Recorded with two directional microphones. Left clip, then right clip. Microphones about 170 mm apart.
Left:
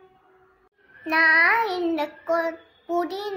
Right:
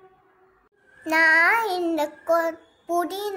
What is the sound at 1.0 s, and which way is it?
Child singing, 20° right (ahead or behind).